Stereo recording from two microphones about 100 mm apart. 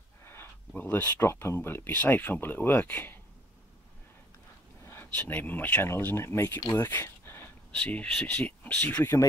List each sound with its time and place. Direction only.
0.2 s speech: 25° left (ahead or behind)
4.8 s speech: 20° left (ahead or behind)
6.7 s a sound: 25° left (ahead or behind)
7.7 s speech: 10° left (ahead or behind)